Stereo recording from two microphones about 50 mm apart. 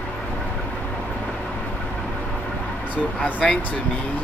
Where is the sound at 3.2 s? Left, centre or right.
Left.